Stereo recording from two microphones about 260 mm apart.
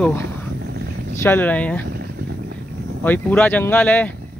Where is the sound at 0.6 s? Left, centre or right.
Right.